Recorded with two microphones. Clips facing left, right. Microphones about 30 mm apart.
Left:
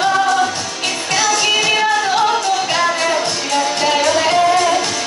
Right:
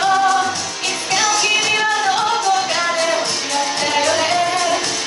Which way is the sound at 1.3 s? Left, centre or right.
Centre.